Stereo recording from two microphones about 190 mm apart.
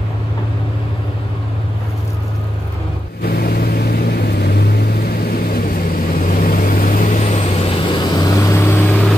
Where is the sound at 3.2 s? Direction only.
55° left (ahead or behind).